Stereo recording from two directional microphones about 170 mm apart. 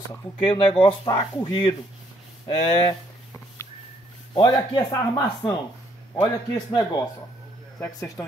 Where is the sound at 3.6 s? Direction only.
15° left (ahead or behind).